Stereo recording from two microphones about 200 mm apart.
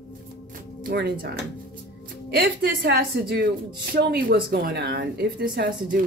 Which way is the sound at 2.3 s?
55° right (ahead or behind).